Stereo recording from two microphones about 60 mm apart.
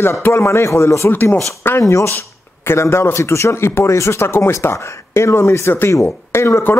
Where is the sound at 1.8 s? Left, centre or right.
Left.